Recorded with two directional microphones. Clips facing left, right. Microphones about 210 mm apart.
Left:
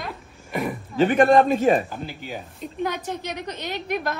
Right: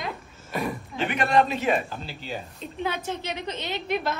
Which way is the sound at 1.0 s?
45° left (ahead or behind).